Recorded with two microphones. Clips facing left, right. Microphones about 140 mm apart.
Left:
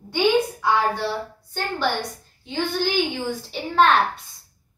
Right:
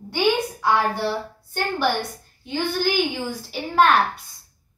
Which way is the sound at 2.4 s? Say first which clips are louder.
Right 1 dB; 5° right (ahead or behind).